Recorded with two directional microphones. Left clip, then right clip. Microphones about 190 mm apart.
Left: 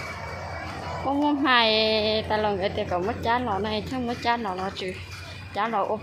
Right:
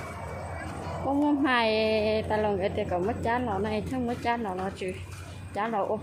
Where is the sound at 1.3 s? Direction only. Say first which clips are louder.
Left 5 dB; centre (ahead or behind).